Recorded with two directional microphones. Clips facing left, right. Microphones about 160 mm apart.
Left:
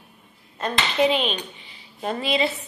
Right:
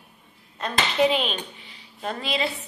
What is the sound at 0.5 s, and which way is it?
Speech, centre (ahead or behind).